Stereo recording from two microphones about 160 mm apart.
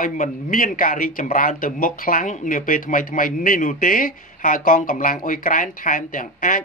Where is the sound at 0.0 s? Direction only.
55° left (ahead or behind).